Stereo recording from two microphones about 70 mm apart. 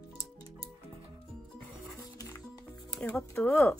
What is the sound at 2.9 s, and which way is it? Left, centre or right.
Speech, centre.